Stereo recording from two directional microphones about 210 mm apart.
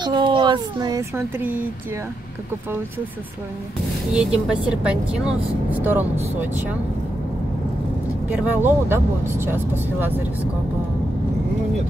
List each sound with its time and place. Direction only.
0.0 s speech: 20° right (ahead or behind)
4.1 s speech: 5° right (ahead or behind)
8.5 s speech: 10° right (ahead or behind)